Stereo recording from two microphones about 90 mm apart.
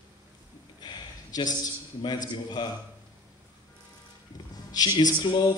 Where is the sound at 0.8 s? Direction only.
50° left (ahead or behind).